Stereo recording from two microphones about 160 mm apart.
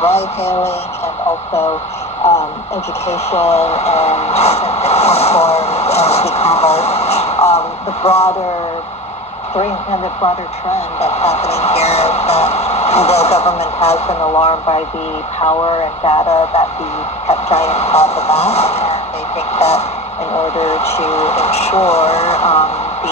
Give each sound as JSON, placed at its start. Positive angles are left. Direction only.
{"t": 3.1, "sound": "speech", "side_deg": 40}
{"t": 10.2, "sound": "speech", "side_deg": 40}